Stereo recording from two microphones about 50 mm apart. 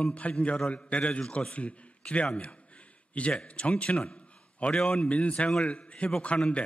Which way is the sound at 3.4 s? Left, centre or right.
Left.